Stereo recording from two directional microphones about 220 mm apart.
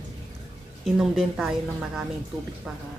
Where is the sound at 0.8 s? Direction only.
Centre (ahead or behind).